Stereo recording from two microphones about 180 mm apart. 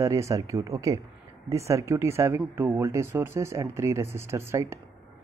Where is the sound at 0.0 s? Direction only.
15° right (ahead or behind).